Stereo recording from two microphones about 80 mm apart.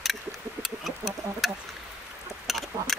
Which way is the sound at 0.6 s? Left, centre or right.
Centre.